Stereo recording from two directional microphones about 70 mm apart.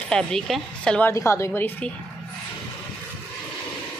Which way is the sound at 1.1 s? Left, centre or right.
Left.